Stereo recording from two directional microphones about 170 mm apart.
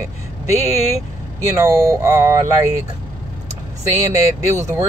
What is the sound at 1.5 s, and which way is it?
Speech, 15° right (ahead or behind).